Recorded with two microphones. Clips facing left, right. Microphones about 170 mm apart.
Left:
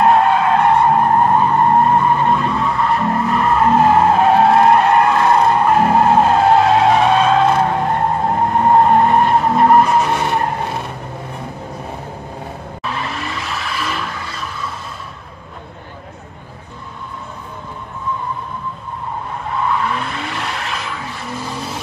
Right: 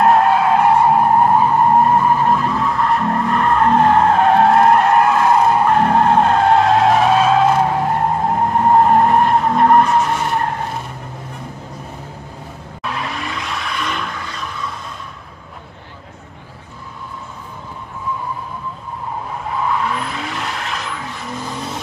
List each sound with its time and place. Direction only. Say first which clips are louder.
0.0 s skidding: even; centre (ahead or behind)
5.7 s skidding: left 1 dB; 5° left (ahead or behind)
8.8 s skidding: even; centre (ahead or behind)
10.0 s skidding: left 1 dB; 75° left (ahead or behind)
12.8 s vehicle: even; centre (ahead or behind)
19.4 s vehicle: left 1 dB; centre (ahead or behind)